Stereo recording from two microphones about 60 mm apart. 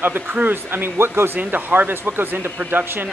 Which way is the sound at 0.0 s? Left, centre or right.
Right.